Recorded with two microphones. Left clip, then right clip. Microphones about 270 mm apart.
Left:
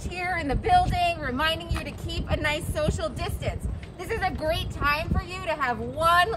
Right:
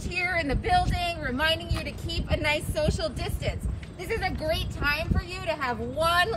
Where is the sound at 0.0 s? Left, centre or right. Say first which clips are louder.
Right 2 dB; centre.